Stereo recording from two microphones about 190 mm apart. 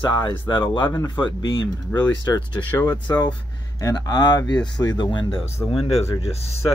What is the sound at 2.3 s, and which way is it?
Speech, 20° left (ahead or behind).